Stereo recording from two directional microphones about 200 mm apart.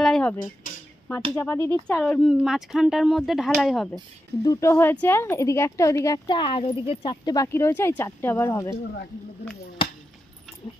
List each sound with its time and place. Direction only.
0.0 s a sound: 5° left (ahead or behind)
1.3 s speech: 10° left (ahead or behind)
4.5 s speech: 15° left (ahead or behind)
9.8 s chop: 25° left (ahead or behind)